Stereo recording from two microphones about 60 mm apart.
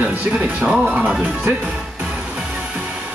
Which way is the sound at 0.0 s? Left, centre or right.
Right.